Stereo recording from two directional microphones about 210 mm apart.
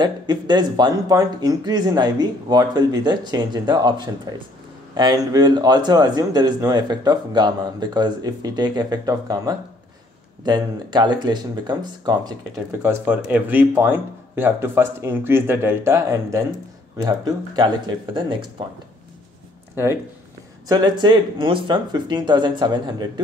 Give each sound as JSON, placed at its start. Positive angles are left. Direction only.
{"t": 0.0, "sound": "speech", "side_deg": -20}
{"t": 12.8, "sound": "speech", "side_deg": -10}
{"t": 19.7, "sound": "speech", "side_deg": -10}